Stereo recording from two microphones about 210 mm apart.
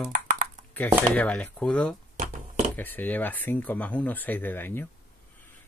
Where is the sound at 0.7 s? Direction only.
5° left (ahead or behind).